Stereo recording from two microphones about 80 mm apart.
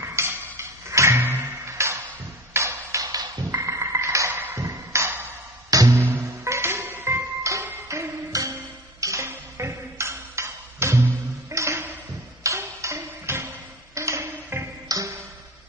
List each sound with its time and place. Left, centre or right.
0.0 s music: right
2.5 s ping: right
4.6 s music: right
5.7 s music: right
6.4 s music: right
11.5 s ping: right
14.9 s music: right